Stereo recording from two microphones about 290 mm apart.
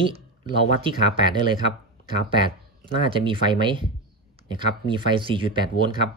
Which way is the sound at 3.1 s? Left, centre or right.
Centre.